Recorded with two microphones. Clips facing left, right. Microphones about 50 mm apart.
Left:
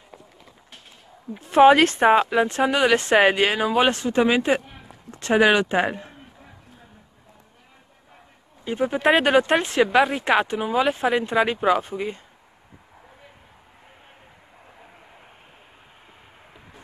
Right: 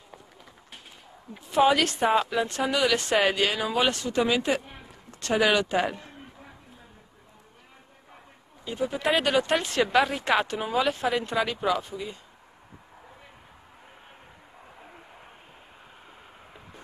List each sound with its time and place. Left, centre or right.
1.4 s speech: left
4.6 s a sound: centre
5.1 s speech: left
8.6 s speech: left
9.9 s speech: centre; by 12.2 s left